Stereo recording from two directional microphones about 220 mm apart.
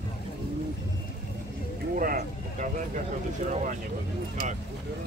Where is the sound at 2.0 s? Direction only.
40° right (ahead or behind).